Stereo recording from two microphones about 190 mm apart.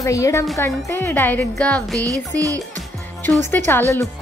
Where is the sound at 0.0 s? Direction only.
15° left (ahead or behind).